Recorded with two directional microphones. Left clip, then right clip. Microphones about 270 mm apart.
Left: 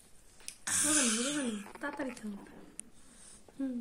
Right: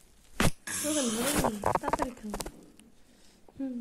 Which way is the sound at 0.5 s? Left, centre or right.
Centre.